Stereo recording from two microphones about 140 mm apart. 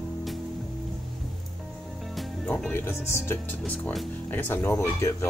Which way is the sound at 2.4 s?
15° left (ahead or behind).